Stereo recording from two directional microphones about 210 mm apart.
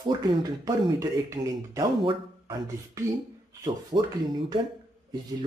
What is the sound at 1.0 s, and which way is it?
Speech, 15° right (ahead or behind).